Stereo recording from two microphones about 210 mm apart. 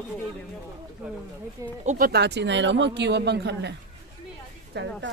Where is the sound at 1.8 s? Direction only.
40° right (ahead or behind).